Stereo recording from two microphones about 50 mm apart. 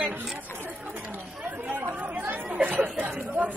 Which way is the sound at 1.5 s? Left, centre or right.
Right.